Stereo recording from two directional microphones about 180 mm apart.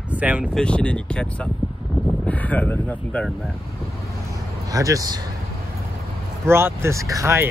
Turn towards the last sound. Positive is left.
turn(degrees=-15)  # may be behind; listen again after turning